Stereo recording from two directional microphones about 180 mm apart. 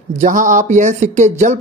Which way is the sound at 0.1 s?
40° right (ahead or behind).